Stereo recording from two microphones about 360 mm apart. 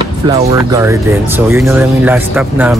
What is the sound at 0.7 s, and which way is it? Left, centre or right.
Speech, centre.